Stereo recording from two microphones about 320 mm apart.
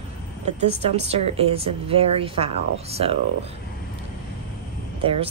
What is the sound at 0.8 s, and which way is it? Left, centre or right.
A woman's voice, centre.